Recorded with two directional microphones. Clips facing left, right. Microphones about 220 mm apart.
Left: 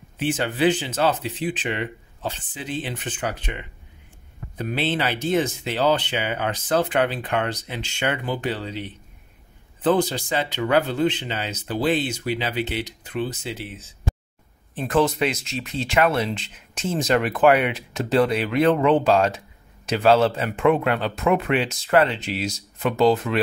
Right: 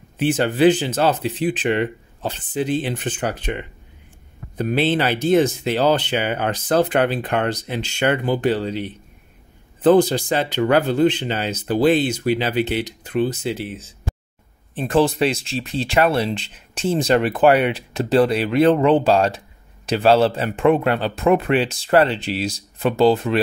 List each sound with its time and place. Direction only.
0.4 s speech: 40° right (ahead or behind)
9.8 s speech: 40° right (ahead or behind)
14.8 s speech: 30° right (ahead or behind)